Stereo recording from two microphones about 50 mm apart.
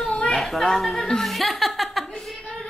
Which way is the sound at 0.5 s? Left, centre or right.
Centre.